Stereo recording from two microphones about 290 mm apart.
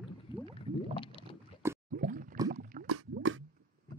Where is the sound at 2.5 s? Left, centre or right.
Right.